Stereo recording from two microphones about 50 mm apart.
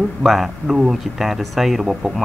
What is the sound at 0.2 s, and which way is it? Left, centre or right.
Speech, centre.